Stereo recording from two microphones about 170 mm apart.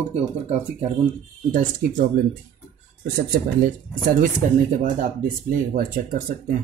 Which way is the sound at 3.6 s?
50° right (ahead or behind).